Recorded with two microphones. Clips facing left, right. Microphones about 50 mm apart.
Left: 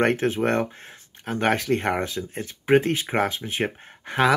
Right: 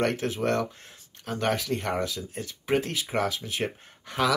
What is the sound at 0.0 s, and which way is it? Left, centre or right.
Speech, left.